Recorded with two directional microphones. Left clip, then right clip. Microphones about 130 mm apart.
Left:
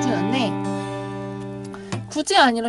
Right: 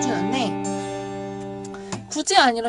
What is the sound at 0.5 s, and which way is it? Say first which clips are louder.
Music: even; 80° left.